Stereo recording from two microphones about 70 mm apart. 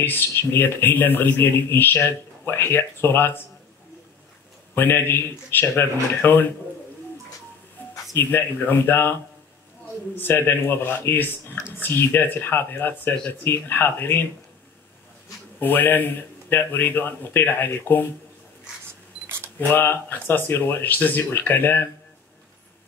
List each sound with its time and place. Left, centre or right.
0.0 s a man's voice: left
4.7 s speech: left
8.2 s speech: left
10.1 s speech: left
15.6 s a man's voice: left
19.7 s a man's voice: left